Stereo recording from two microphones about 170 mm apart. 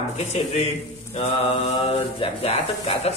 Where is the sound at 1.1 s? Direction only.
40° left (ahead or behind).